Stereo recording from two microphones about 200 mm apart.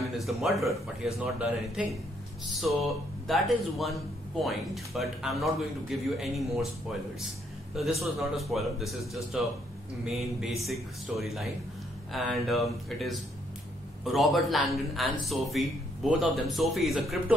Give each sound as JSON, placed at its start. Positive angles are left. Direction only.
{"t": 0.0, "sound": "speech", "side_deg": 0}
{"t": 8.0, "sound": "speech", "side_deg": 0}